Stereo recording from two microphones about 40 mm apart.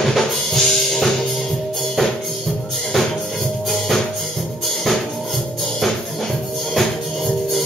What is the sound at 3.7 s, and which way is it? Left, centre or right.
Music, centre.